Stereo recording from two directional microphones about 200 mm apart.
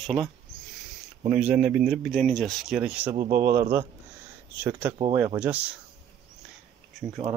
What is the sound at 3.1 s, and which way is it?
Speech, 15° right (ahead or behind).